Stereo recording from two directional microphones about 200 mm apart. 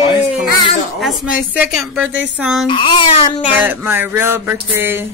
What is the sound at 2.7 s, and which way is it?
Speech, 25° left (ahead or behind).